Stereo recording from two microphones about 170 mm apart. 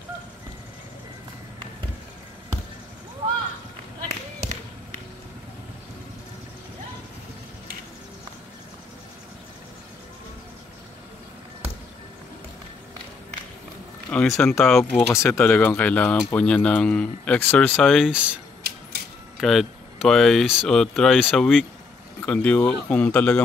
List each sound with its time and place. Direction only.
14.1 s speech: centre (ahead or behind)
15.1 s speech: 15° left (ahead or behind); by 18.4 s 5° right (ahead or behind)
18.6 s a sound: 65° right (ahead or behind)
19.3 s speech: centre (ahead or behind)